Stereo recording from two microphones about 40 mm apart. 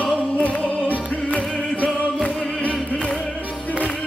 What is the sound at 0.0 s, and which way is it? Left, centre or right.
Music, left.